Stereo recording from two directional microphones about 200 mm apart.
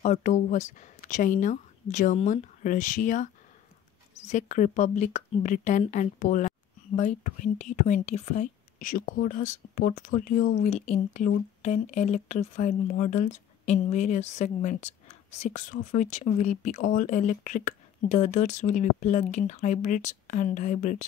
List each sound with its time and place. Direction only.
0.0 s speech: 35° left (ahead or behind)